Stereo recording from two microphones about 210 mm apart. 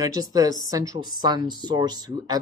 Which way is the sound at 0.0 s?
20° right (ahead or behind).